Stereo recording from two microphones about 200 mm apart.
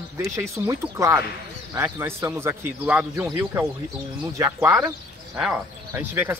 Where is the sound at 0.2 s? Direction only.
15° right (ahead or behind).